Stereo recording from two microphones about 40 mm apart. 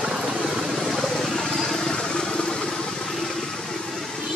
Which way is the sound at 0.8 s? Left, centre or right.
Centre.